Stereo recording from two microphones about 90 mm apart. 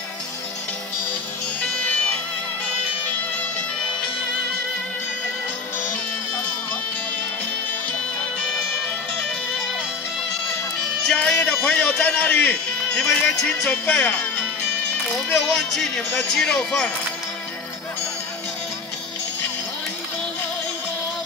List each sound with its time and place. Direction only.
1.6 s music: 15° left (ahead or behind)
11.1 s music: 10° left (ahead or behind)
11.6 s speech: 10° left (ahead or behind)
15.4 s speech: 5° left (ahead or behind)